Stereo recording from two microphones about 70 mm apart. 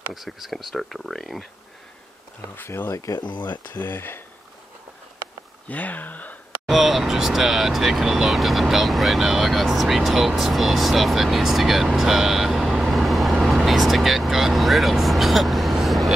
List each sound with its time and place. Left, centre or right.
0.1 s speech: centre
2.5 s speech: left
3.4 s speech: left
5.7 s speech: left
6.6 s speech: centre